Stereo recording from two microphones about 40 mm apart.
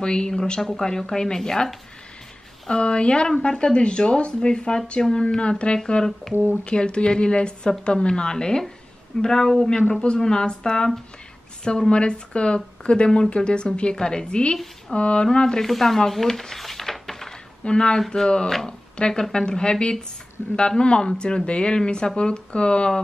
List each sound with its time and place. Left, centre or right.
0.0 s speech: left
2.7 s speech: left
15.3 s speech: centre
15.6 s speech: centre
16.1 s a sound: centre
17.6 s speech: left